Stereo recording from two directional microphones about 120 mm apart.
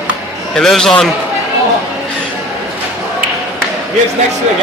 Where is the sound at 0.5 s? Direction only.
5° left (ahead or behind).